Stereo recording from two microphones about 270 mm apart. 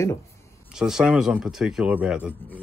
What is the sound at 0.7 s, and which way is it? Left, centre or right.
Speech, centre.